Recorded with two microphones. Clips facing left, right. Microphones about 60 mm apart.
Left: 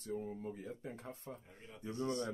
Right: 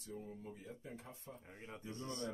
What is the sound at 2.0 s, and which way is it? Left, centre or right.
Speech, left.